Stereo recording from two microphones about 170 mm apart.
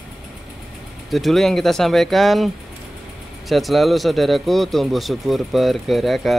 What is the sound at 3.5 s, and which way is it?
Speech, centre (ahead or behind).